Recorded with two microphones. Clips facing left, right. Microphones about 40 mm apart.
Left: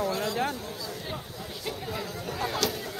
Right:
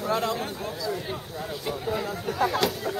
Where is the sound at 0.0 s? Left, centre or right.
Right.